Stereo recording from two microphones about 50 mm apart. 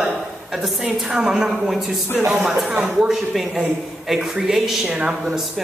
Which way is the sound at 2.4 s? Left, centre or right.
Centre.